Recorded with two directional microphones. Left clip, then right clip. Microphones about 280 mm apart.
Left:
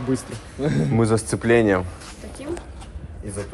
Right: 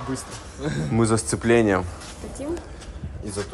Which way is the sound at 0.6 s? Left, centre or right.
Centre.